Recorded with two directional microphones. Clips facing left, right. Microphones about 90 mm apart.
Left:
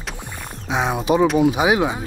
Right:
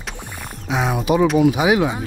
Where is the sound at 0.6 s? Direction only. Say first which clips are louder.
Even; 25° left (ahead or behind).